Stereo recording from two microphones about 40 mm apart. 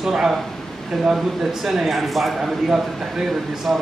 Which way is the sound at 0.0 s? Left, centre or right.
Centre.